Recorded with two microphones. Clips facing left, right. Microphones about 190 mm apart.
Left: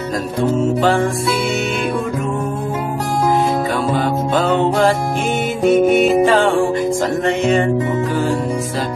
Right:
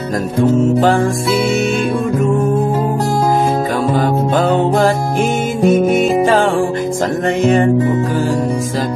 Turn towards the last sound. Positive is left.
turn(degrees=-45)  # may be behind; listen again after turning